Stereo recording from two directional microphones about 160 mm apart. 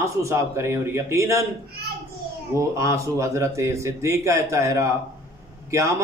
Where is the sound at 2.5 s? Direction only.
20° right (ahead or behind).